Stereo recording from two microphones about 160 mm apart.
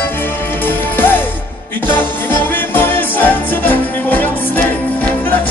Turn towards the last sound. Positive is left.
turn(degrees=10)  # may be behind; listen again after turning